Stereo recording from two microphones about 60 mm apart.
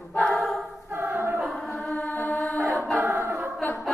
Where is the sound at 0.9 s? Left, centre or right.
Right.